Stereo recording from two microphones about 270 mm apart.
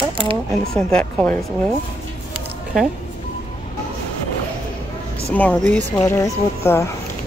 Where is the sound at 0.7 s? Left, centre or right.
Centre.